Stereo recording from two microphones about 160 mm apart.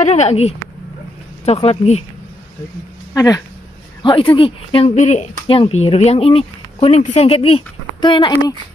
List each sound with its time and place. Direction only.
0.0 s speech: 40° left (ahead or behind)
3.2 s speech: 20° left (ahead or behind)
4.0 s speech: 35° left (ahead or behind)
4.9 s speech: 45° left (ahead or behind)
5.5 s speech: 35° left (ahead or behind)